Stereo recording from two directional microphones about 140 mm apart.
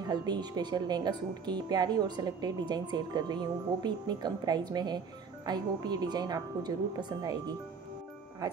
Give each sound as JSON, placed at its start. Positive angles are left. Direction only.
{"t": 0.1, "sound": "a woman's voice", "side_deg": -30}